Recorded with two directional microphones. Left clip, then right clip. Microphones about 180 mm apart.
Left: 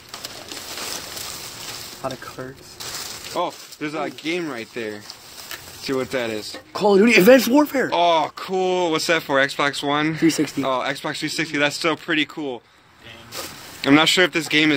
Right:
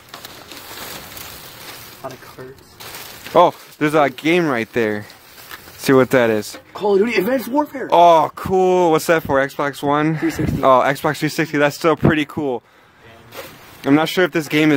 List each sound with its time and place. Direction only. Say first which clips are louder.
2.0 s speech: left 3 dB; 35° left (ahead or behind)
3.3 s speech: right 13 dB; 60° right (ahead or behind)
6.7 s speech: left 1 dB; 35° left (ahead or behind)
7.9 s speech: right 11 dB; 45° right (ahead or behind)
9.3 s speech: right 1 dB; 35° right (ahead or behind)
13.8 s speech: even; 25° right (ahead or behind)